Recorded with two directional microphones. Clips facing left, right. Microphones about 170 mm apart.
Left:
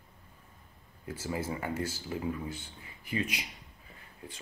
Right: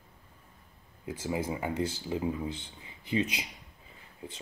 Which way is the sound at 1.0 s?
15° right (ahead or behind).